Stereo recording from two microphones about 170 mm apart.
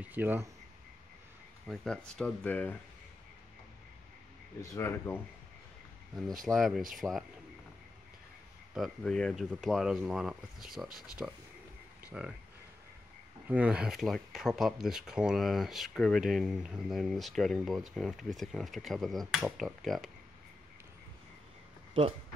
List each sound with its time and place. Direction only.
0.0 s speech: 10° right (ahead or behind)
1.7 s speech: 5° left (ahead or behind)
4.6 s speech: 15° left (ahead or behind)
6.4 s speech: centre (ahead or behind)
8.7 s speech: centre (ahead or behind)
13.5 s speech: 10° right (ahead or behind)